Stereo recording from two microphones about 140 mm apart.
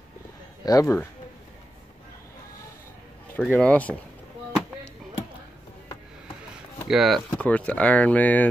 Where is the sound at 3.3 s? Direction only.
10° left (ahead or behind).